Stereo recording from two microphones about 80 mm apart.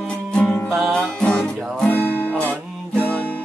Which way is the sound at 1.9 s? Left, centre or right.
Left.